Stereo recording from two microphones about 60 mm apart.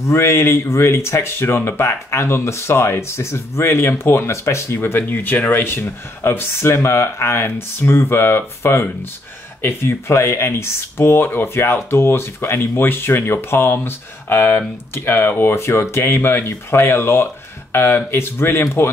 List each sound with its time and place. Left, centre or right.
0.0 s speech: left
15.5 s speech: left